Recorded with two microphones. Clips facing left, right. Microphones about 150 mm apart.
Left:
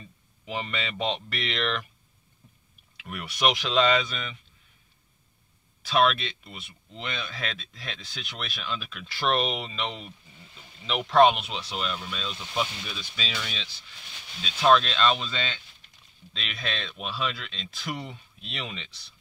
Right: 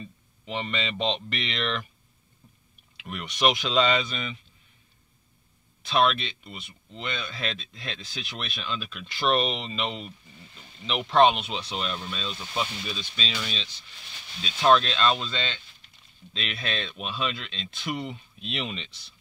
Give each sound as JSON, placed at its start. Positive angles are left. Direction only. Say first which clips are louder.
{"t": 0.5, "sound": "speech", "louder": "right 2 dB", "side_deg": 5}
{"t": 3.0, "sound": "speech", "louder": "right 1 dB", "side_deg": 0}
{"t": 5.8, "sound": "speech", "louder": "even", "side_deg": 0}
{"t": 14.4, "sound": "speech", "louder": "even", "side_deg": 0}